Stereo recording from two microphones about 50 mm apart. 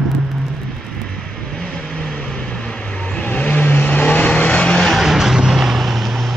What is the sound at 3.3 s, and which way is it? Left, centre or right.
Vehicle, left.